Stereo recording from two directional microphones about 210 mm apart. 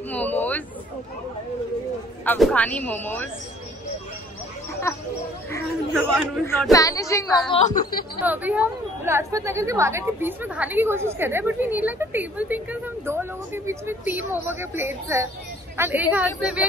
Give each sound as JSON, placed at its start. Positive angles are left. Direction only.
{"t": 0.1, "sound": "a sound", "side_deg": 10}
{"t": 2.2, "sound": "speech", "side_deg": 5}
{"t": 6.4, "sound": "speech", "side_deg": 10}
{"t": 7.6, "sound": "speech", "side_deg": 40}
{"t": 8.2, "sound": "a woman's voice", "side_deg": -10}